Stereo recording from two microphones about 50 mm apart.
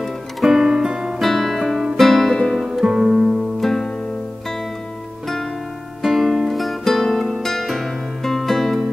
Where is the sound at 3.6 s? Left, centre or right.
Centre.